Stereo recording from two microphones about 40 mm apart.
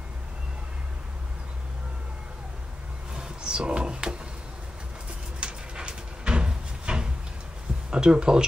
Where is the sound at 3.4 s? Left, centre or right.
Right.